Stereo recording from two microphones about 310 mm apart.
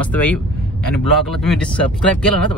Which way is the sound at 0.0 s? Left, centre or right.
Centre.